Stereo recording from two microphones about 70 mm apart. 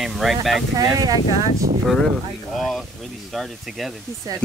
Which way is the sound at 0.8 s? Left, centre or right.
Right.